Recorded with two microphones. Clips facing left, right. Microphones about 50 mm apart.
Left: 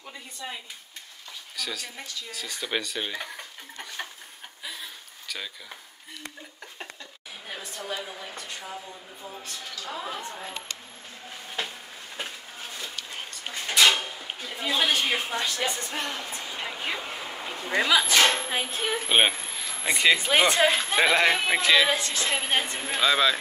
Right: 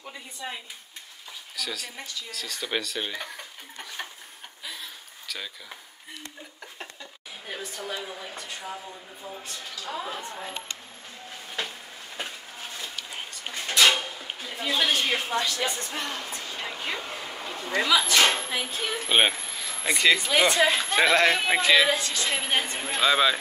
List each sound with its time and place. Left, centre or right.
0.0 s speech: centre
1.6 s speech: centre
7.4 s speech: centre
12.2 s a sound: centre
15.7 s speech: centre
17.6 s speech: centre
20.2 s speech: left
20.8 s speech: centre
21.4 s speech: centre
22.2 s speech: centre
22.9 s speech: centre